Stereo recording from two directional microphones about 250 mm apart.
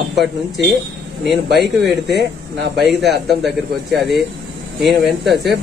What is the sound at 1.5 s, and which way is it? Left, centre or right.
Speech, right.